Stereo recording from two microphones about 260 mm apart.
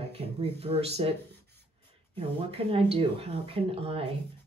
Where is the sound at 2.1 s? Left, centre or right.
Right.